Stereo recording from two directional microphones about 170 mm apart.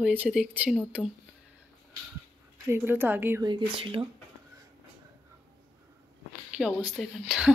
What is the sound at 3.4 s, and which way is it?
Speech, 30° right (ahead or behind).